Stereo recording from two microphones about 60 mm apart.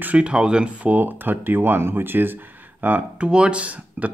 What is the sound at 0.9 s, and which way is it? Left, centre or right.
Speech, right.